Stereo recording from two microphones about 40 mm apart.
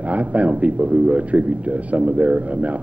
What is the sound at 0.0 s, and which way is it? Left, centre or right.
A man's voice, right.